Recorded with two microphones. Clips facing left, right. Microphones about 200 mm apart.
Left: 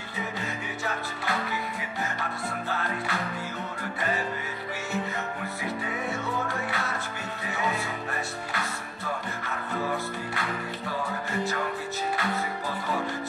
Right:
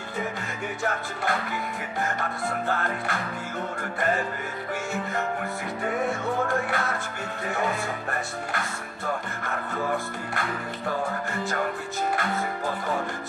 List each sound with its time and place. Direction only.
0.8 s music: 50° right (ahead or behind)
2.7 s music: 50° right (ahead or behind)
5.9 s music: 50° right (ahead or behind)
12.2 s music: 50° right (ahead or behind)